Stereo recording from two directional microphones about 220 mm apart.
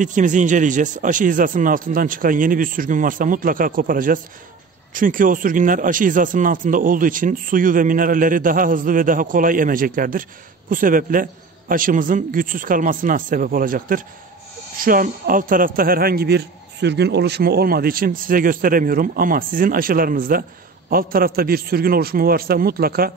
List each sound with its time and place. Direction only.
0.0 s a man's voice: 35° right (ahead or behind)